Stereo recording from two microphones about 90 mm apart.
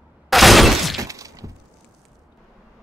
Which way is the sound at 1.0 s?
40° right (ahead or behind).